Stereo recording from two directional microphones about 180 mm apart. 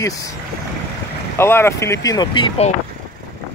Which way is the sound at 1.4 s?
15° left (ahead or behind).